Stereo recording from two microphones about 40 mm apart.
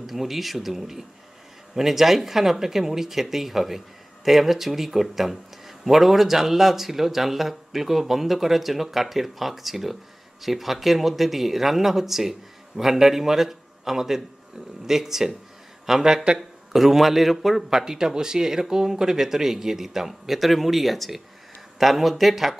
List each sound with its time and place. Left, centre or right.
0.0 s a man's voice: centre
17.7 s a man's voice: centre